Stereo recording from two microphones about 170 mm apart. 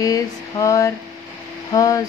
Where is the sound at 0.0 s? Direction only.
20° left (ahead or behind).